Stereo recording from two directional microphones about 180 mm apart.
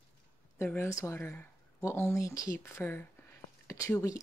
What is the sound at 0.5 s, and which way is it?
Speech, 10° left (ahead or behind).